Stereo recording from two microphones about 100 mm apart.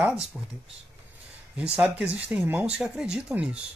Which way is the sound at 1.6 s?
10° right (ahead or behind).